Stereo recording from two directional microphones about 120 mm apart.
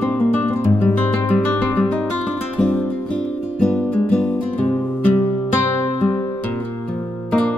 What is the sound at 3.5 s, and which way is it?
Music, 10° left (ahead or behind).